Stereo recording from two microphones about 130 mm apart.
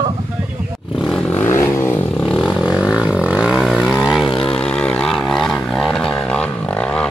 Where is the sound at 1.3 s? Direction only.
20° left (ahead or behind).